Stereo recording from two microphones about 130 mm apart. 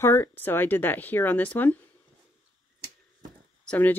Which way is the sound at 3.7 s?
15° left (ahead or behind).